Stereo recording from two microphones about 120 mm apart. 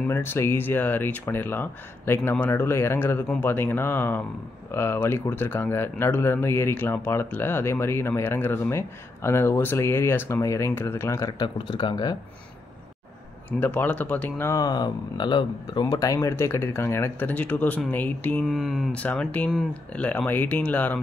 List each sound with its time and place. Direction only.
0.0 s speech: 20° left (ahead or behind)
11.4 s speech: 40° left (ahead or behind)
13.5 s speech: 15° left (ahead or behind)
14.5 s speech: 35° left (ahead or behind); by 18.4 s 15° left (ahead or behind)
18.5 s speech: centre (ahead or behind)
18.9 s speech: 10° left (ahead or behind)